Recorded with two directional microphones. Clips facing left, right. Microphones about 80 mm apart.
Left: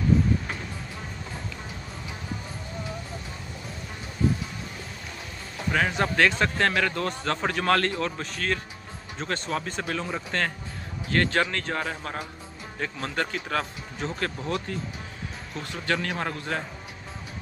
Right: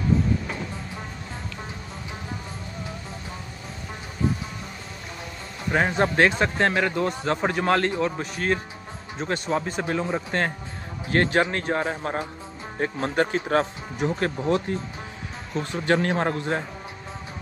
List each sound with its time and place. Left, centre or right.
5.7 s a man's voice: right; by 9.3 s centre
9.8 s a man's voice: right